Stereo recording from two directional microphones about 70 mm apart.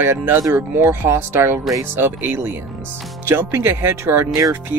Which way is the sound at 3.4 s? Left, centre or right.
Right.